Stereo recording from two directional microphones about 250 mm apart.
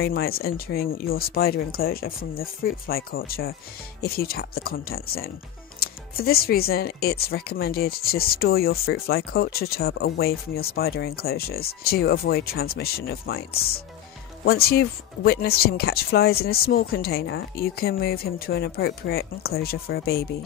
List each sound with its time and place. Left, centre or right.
0.0 s speech: left